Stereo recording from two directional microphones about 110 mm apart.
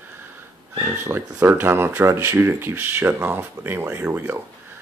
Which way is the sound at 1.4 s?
20° right (ahead or behind).